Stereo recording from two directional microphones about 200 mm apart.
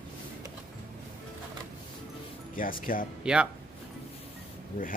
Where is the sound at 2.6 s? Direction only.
45° left (ahead or behind).